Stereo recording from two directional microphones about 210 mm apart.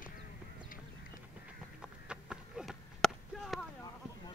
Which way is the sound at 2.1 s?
5° right (ahead or behind).